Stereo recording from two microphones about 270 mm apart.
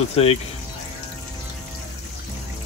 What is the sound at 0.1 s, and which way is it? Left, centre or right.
Speech, left.